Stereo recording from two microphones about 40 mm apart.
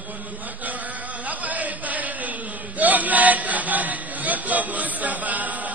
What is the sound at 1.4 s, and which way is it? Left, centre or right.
Chant, right.